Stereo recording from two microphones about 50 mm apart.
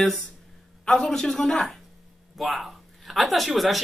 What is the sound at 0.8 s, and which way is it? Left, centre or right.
Speech, centre.